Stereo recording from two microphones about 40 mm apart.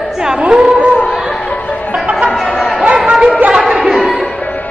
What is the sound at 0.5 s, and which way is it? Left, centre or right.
Speech, right.